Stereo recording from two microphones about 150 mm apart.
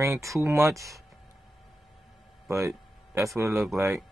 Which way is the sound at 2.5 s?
20° right (ahead or behind).